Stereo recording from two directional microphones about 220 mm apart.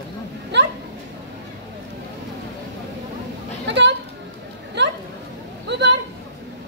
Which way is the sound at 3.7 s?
50° right (ahead or behind).